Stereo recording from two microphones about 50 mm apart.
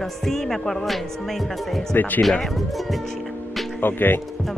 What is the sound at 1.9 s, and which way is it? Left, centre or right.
Speech, left.